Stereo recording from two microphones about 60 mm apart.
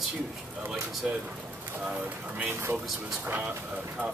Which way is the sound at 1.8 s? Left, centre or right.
Centre.